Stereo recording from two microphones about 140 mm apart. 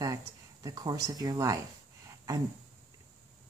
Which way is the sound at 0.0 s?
25° right (ahead or behind).